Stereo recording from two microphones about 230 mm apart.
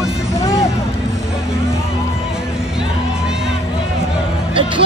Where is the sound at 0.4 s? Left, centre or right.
Centre.